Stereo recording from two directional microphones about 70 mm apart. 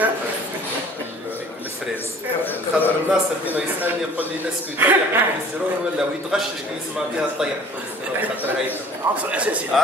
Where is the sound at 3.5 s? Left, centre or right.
Right.